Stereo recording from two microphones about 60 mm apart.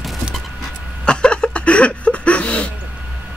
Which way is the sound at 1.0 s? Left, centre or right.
Centre.